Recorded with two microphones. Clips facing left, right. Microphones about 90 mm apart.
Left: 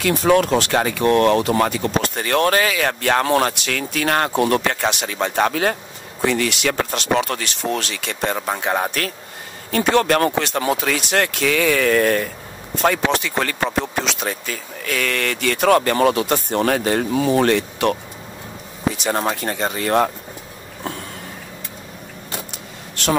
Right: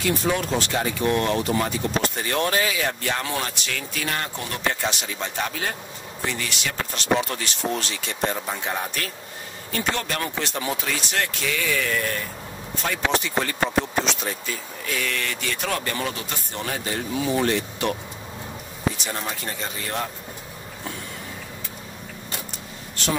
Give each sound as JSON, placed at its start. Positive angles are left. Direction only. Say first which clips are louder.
{"t": 0.0, "sound": "speech", "louder": "left 8 dB", "side_deg": 75}
{"t": 9.7, "sound": "speech", "louder": "left 10 dB", "side_deg": 75}
{"t": 19.0, "sound": "speech", "louder": "left 9 dB", "side_deg": 55}
{"t": 23.0, "sound": "speech", "louder": "left 6 dB", "side_deg": 75}